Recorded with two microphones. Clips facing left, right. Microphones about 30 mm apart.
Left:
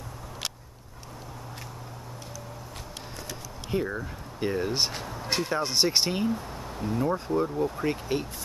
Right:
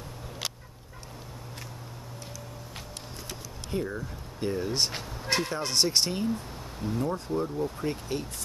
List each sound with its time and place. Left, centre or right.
3.7 s speech: centre
5.1 s a sound: centre
5.5 s speech: centre